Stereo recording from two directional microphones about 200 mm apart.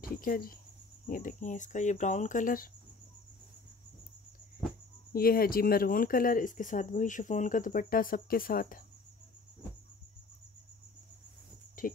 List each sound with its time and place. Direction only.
0.0 s speech: 45° left (ahead or behind)
5.1 s speech: 45° left (ahead or behind)
11.8 s a sound: 40° left (ahead or behind)